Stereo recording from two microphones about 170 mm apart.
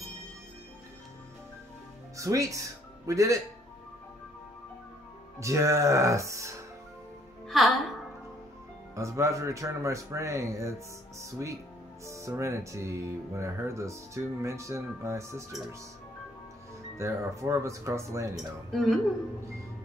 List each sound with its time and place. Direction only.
2.1 s speech: 20° right (ahead or behind)
5.4 s speech: 15° right (ahead or behind)
7.4 s music: centre (ahead or behind)
8.9 s speech: 15° right (ahead or behind)
16.9 s speech: 15° right (ahead or behind)
18.7 s a woman's voice: centre (ahead or behind)